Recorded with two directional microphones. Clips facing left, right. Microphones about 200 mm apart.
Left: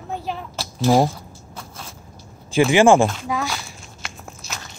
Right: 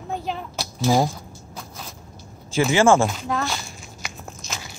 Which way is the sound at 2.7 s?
15° left (ahead or behind).